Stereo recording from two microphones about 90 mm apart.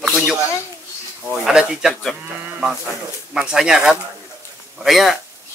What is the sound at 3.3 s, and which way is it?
A man's voice, 5° right (ahead or behind).